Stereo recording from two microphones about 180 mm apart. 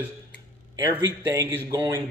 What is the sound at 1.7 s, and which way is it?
Speech, 15° right (ahead or behind).